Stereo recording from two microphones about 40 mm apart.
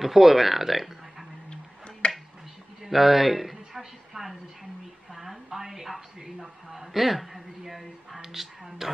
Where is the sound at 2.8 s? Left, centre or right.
Centre.